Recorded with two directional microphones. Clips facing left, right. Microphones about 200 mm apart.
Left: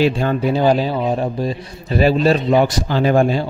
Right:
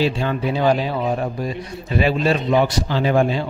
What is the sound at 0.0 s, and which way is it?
A man's voice, 45° left (ahead or behind).